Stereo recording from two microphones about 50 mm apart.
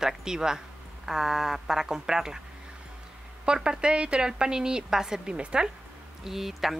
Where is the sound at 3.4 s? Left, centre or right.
Centre.